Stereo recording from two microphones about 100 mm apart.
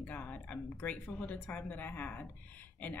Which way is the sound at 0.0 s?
15° left (ahead or behind).